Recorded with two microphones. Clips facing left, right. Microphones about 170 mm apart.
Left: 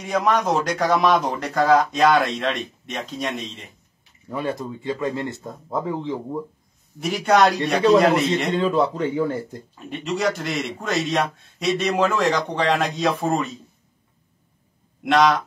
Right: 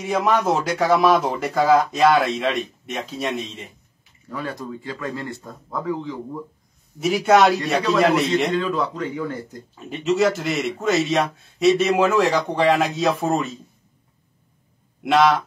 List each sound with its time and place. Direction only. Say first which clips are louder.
0.0 s a man's voice: right 1 dB; 5° right (ahead or behind)
4.3 s speech: left 3 dB; 25° left (ahead or behind)
7.0 s a man's voice: right 2 dB; centre (ahead or behind)
8.5 s speech: left 3 dB; 25° left (ahead or behind)
9.8 s a man's voice: right 6 dB; centre (ahead or behind)
15.0 s a man's voice: right 1 dB; 5° right (ahead or behind)